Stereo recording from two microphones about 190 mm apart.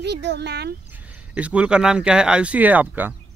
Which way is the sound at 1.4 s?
5° right (ahead or behind).